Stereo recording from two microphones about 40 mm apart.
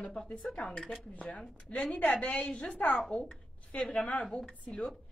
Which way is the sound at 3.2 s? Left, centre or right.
Left.